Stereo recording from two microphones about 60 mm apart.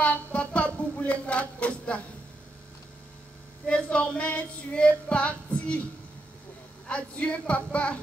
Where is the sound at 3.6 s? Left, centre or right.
Centre.